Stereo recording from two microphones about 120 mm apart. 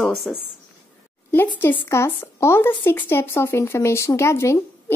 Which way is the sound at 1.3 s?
15° left (ahead or behind).